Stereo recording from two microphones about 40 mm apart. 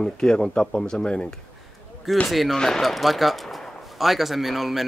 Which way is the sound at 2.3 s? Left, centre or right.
Centre.